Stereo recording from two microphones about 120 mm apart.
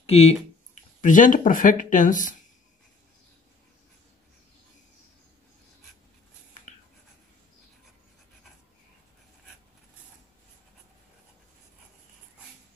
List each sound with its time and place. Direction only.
0.0 s speech: 55° left (ahead or behind)
1.0 s speech: 90° left